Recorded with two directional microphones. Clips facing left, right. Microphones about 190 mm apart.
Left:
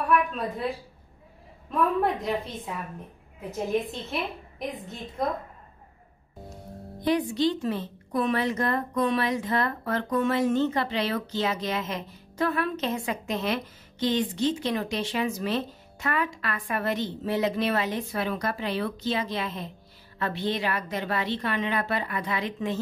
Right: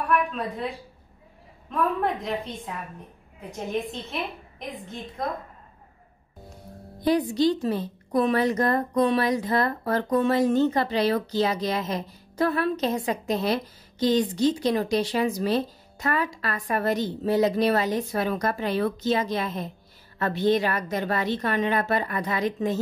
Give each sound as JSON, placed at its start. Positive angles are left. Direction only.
{"t": 0.4, "sound": "a woman's voice", "side_deg": 0}
{"t": 7.1, "sound": "a woman's voice", "side_deg": -40}